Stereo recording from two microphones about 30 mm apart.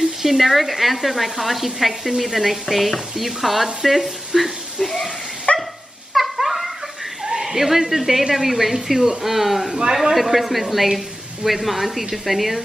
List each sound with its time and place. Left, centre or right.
0.2 s a woman's voice: centre
5.5 s dog: left
6.3 s dog: centre
7.2 s a sound: right
7.5 s a woman's voice: centre